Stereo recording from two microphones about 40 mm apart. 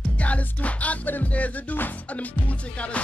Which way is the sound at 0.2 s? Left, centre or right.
Left.